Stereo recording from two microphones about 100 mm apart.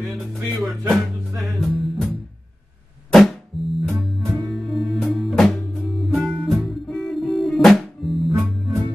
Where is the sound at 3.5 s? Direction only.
Centre (ahead or behind).